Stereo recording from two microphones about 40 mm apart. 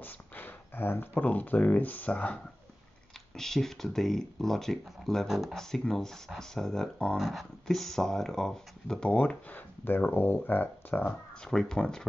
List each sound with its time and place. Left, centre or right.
0.0 s a sound: left
1.2 s speech: left
3.3 s speech: centre
9.1 s speech: left
9.8 s speech: left
11.4 s speech: centre